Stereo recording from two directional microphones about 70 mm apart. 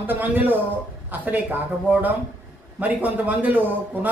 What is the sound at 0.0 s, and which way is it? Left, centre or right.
A man's voice, right.